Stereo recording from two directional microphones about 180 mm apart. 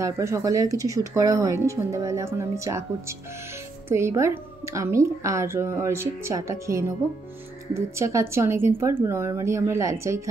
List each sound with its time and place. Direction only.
0.0 s a woman's voice: 15° right (ahead or behind)